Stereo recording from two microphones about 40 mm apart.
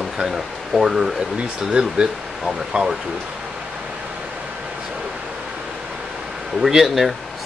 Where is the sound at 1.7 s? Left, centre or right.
Right.